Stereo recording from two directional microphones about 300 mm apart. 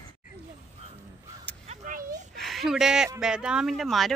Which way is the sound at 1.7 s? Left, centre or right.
Right.